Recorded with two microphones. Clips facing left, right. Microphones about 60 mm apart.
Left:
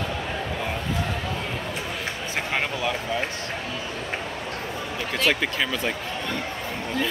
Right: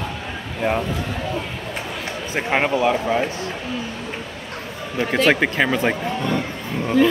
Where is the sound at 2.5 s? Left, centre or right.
Right.